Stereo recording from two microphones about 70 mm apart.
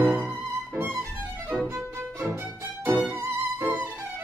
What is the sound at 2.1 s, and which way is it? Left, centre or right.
Music, right.